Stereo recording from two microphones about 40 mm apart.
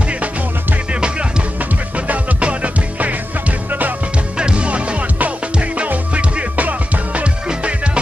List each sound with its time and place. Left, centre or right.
2.0 s music: right
4.4 s music: right
7.4 s music: right